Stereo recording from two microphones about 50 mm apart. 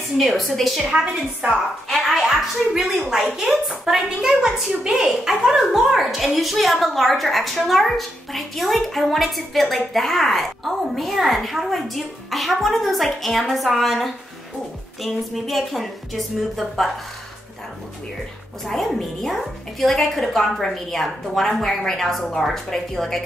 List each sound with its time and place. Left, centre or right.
0.2 s a woman's voice: centre
1.4 s a woman's voice: right
2.0 s a woman's voice: centre
18.7 s a woman's voice: centre